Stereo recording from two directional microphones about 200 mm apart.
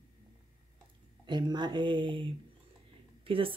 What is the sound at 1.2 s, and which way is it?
Speech, 20° right (ahead or behind).